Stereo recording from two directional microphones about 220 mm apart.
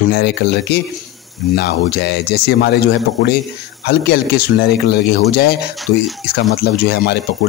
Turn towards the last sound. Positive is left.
turn(degrees=45)  # may be behind; listen again after turning